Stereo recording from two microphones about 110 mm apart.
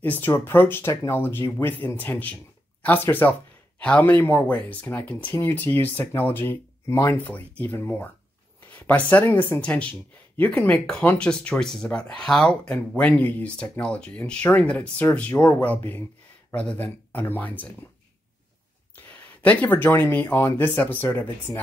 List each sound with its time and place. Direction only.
0.0 s speech: 20° left (ahead or behind)
7.2 s speech: 15° left (ahead or behind)
19.4 s speech: 15° left (ahead or behind)